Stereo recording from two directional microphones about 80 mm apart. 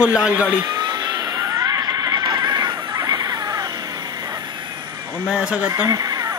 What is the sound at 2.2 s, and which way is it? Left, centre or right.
Neigh, right.